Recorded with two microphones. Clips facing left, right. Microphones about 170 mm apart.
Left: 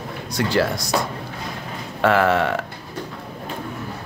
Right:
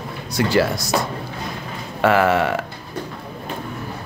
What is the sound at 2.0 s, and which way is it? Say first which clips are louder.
Speech: right 1 dB; 5° right (ahead or behind).